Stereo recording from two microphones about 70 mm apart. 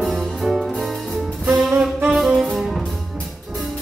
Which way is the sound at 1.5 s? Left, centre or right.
Right.